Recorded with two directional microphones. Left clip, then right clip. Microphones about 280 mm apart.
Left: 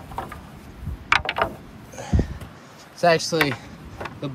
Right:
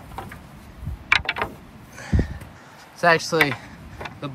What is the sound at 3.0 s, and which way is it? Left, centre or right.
Speech, centre.